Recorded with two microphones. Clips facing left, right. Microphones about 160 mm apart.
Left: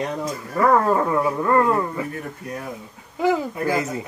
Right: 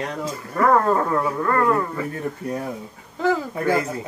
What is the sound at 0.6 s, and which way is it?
Speech, 5° left (ahead or behind).